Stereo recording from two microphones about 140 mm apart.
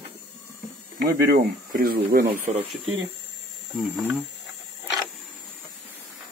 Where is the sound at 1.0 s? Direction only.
90° right.